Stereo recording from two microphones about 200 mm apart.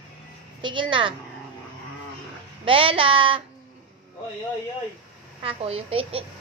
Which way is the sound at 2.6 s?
25° right (ahead or behind).